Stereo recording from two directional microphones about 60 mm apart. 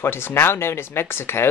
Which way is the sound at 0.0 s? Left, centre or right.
Left.